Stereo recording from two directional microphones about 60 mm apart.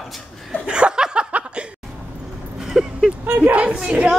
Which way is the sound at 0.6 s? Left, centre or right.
Centre.